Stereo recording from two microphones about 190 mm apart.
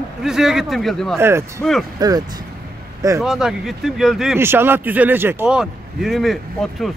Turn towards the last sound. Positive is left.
turn(degrees=0)  # may be behind; listen again after turning